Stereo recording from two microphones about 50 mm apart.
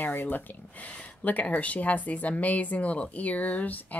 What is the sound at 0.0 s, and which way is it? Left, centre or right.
Speech, left.